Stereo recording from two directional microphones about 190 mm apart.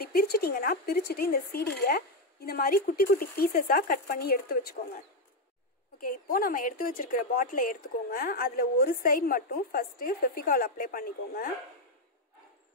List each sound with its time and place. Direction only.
0.0 s a woman's voice: 55° left (ahead or behind)
5.9 s a woman's voice: 45° left (ahead or behind)